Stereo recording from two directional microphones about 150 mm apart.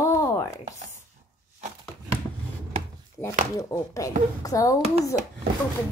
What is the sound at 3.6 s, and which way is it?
A woman's voice, 20° left (ahead or behind).